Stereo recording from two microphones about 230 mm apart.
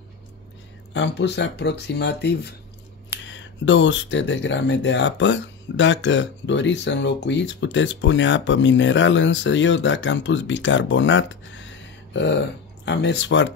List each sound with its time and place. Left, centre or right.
0.9 s speech: left